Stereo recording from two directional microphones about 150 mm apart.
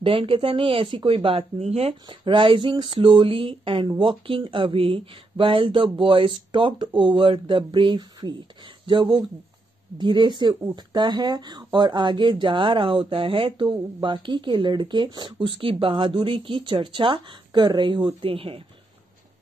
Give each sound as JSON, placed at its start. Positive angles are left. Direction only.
{"t": 0.0, "sound": "speech", "side_deg": -35}
{"t": 2.0, "sound": "speech", "side_deg": -35}